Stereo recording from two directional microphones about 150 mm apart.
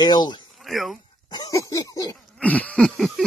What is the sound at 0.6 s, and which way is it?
Speech, centre (ahead or behind).